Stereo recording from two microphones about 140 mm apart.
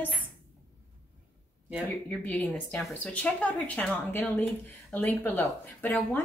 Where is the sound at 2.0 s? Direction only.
10° left (ahead or behind).